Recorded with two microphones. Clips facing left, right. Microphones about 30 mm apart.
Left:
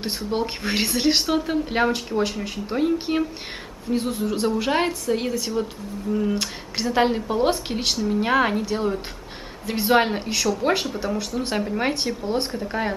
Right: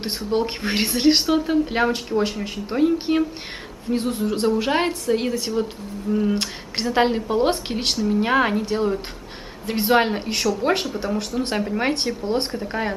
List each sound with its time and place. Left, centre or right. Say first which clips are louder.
0.0 s a woman's voice: right 2 dB; centre
12.3 s a woman's voice: right 2 dB; centre